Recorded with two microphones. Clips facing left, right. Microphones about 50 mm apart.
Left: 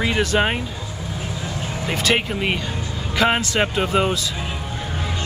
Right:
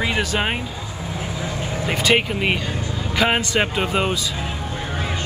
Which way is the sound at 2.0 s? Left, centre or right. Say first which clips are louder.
Right 2 dB; centre.